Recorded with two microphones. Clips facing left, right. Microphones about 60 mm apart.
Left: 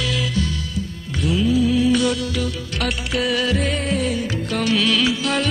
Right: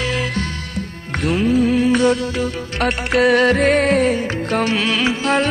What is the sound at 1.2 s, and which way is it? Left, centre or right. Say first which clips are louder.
Music: right 2 dB; right.